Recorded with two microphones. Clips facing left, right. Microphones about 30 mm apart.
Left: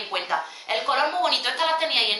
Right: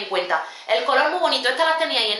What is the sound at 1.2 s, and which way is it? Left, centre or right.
Speech, centre.